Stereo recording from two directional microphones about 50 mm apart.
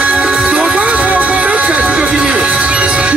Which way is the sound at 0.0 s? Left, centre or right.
Right.